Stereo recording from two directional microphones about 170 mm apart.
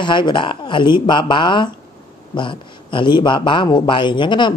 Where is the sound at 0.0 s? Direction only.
25° left (ahead or behind).